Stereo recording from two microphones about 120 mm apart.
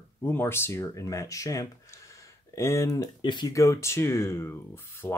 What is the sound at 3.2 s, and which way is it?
Speech, 40° left (ahead or behind).